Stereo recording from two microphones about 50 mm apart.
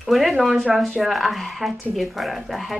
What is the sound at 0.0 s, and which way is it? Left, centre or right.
A woman's voice, centre.